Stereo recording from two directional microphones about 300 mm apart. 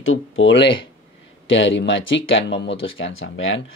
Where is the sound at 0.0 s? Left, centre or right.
Left.